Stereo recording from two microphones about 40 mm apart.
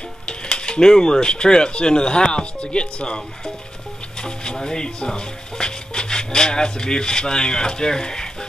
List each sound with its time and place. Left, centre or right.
0.3 s speech: left